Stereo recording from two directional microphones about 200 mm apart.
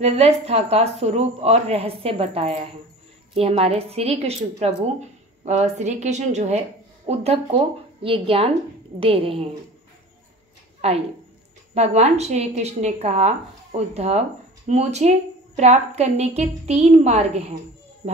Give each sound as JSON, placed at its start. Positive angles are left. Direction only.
{"t": 0.0, "sound": "a woman's voice", "side_deg": -30}
{"t": 5.4, "sound": "a woman's voice", "side_deg": -35}
{"t": 10.8, "sound": "a woman's voice", "side_deg": -30}